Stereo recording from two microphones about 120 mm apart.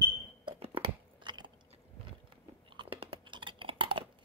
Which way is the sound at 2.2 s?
45° right (ahead or behind).